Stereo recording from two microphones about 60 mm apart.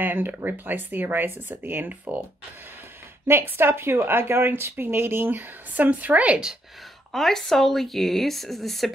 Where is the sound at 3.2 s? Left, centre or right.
Right.